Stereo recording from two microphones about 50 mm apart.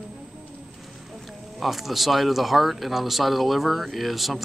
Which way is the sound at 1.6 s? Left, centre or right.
Centre.